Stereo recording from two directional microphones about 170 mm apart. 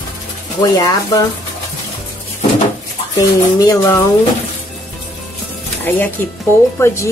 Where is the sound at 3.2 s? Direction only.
20° left (ahead or behind).